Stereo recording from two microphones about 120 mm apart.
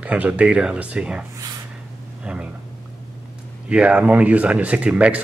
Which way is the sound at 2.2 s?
10° right (ahead or behind).